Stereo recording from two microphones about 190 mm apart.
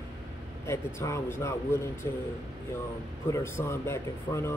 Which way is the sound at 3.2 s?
15° left (ahead or behind).